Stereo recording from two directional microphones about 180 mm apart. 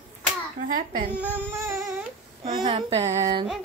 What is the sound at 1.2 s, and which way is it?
Baby cry, 10° right (ahead or behind).